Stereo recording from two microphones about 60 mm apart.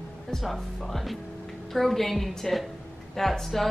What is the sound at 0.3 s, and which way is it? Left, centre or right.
Speech, centre.